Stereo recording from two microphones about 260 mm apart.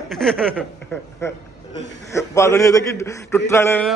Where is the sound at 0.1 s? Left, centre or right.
Centre.